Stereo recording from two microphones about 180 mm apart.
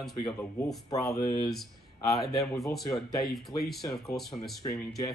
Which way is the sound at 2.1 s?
Centre (ahead or behind).